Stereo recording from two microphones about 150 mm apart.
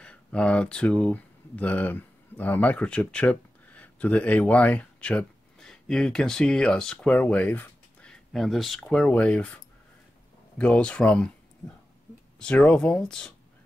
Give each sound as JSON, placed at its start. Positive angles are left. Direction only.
{"t": 0.0, "sound": "speech", "side_deg": 5}
{"t": 10.6, "sound": "speech", "side_deg": 5}